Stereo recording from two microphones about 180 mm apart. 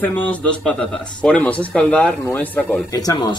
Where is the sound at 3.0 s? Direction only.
20° left (ahead or behind).